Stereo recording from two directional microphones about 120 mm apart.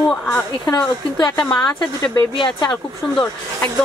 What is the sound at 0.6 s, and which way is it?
A woman's voice, 30° left (ahead or behind).